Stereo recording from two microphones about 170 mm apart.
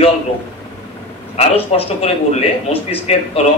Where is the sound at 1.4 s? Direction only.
35° left (ahead or behind).